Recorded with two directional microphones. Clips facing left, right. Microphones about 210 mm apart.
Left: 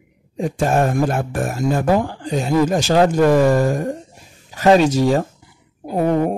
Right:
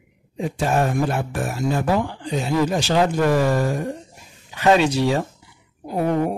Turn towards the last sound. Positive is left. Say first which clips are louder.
# left 3 dB
turn(degrees=40)  # may be behind; listen again after turning